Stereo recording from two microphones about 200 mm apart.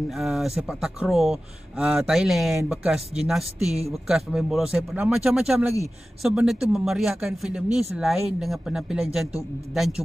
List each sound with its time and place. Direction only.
0.1 s speech: centre (ahead or behind)